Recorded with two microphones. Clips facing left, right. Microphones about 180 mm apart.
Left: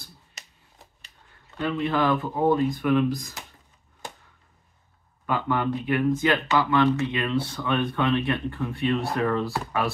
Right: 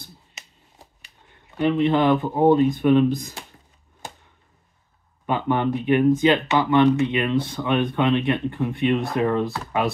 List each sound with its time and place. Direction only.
1.6 s speech: 20° right (ahead or behind)
5.2 s speech: 20° right (ahead or behind)